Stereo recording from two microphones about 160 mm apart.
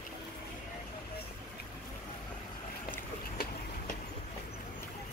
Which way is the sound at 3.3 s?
65° left (ahead or behind).